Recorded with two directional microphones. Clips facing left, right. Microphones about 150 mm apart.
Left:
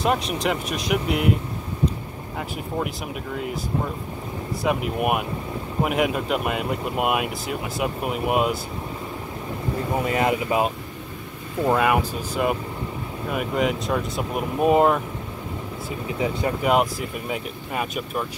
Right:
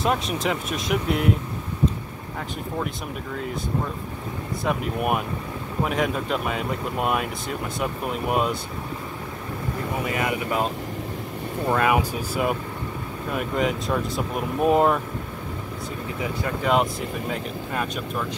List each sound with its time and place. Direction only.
0.0 s speech: centre (ahead or behind)
4.6 s speech: 5° left (ahead or behind)
10.1 s speech: 25° left (ahead or behind)
11.7 s speech: centre (ahead or behind)
13.3 s speech: 5° left (ahead or behind)
16.2 s speech: 20° left (ahead or behind)
16.6 s speech: 5° left (ahead or behind)